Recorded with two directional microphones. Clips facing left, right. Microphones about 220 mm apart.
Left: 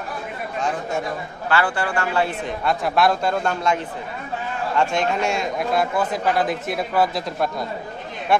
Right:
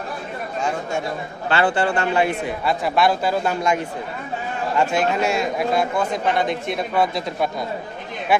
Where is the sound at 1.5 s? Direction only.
25° right (ahead or behind).